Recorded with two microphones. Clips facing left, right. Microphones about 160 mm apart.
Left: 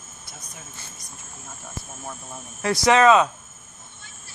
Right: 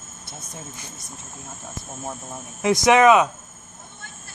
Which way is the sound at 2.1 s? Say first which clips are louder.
Right 3 dB; 20° right (ahead or behind).